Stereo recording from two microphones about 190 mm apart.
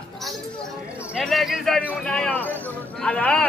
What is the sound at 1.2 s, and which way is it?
A man's voice, centre (ahead or behind).